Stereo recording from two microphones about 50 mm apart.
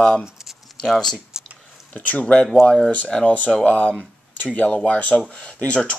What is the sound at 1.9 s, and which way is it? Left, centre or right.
Speech, left.